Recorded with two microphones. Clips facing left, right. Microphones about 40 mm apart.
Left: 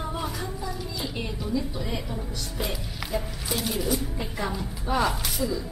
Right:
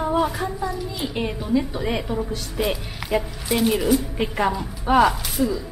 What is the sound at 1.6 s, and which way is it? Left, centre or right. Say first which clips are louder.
A woman's voice: right 8 dB; right.